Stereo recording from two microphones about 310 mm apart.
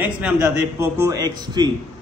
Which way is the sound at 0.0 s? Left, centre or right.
Centre.